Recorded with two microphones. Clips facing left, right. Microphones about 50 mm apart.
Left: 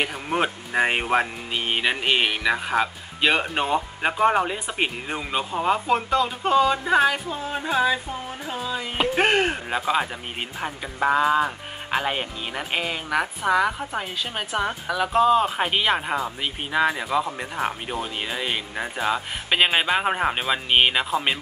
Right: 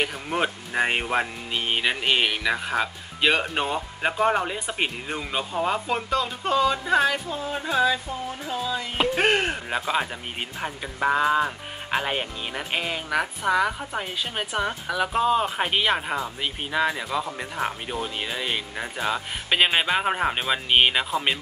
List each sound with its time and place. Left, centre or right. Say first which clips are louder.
0.0 s speech: left 1 dB; centre
8.5 s music: right 1 dB; left
8.9 s speech: left 2 dB; centre